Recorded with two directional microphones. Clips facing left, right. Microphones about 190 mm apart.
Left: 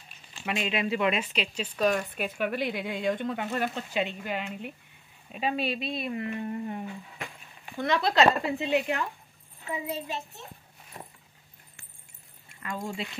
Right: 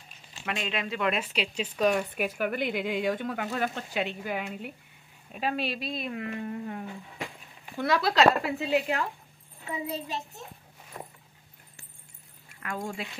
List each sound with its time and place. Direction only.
0.5 s speech: 10° left (ahead or behind)
1.3 s speech: 10° right (ahead or behind)
9.8 s a child's voice: 35° right (ahead or behind)
12.6 s speech: 5° right (ahead or behind)